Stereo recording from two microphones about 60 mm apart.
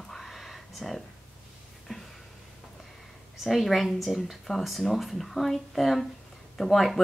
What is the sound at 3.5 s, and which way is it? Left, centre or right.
Speech, centre.